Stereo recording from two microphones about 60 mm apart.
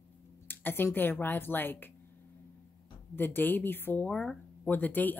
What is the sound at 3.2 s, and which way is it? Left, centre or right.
Speech, left.